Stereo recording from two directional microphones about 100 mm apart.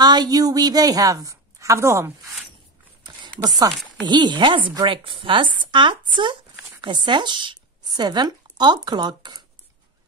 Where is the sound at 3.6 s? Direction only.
45° right (ahead or behind).